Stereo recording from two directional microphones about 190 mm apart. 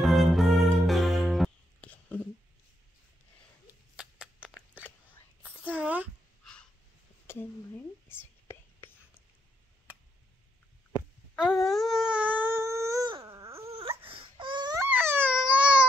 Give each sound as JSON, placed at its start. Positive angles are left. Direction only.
{"t": 0.0, "sound": "music", "side_deg": 0}
{"t": 3.9, "sound": "shuffling cards", "side_deg": -5}
{"t": 5.8, "sound": "a sound", "side_deg": -5}
{"t": 7.2, "sound": "whispering", "side_deg": 10}
{"t": 11.0, "sound": "a sound", "side_deg": -5}
{"t": 14.4, "sound": "baby cry", "side_deg": -25}
{"t": 14.9, "sound": "baby cry", "side_deg": -10}